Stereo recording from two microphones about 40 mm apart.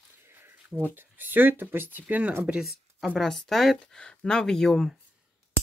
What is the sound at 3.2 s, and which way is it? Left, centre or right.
Speech, centre.